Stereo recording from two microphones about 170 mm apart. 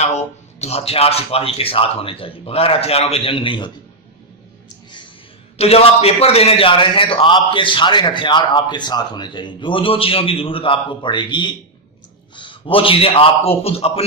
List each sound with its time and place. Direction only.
0.0 s speech: 40° left (ahead or behind)
5.6 s a man's voice: 35° left (ahead or behind)